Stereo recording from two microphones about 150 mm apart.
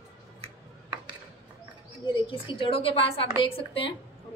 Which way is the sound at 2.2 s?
35° left (ahead or behind).